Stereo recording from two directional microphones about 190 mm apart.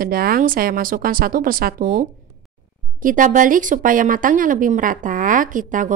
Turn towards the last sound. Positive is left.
turn(degrees=-45)  # may be behind; listen again after turning